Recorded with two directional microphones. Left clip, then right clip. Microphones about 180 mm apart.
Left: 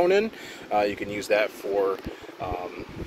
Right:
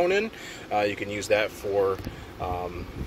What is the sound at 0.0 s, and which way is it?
Speech, 15° left (ahead or behind).